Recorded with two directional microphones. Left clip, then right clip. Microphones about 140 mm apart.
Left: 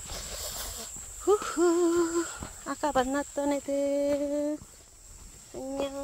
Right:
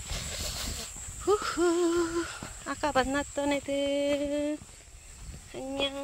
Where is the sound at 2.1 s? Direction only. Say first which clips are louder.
Left 2 dB; 20° left (ahead or behind).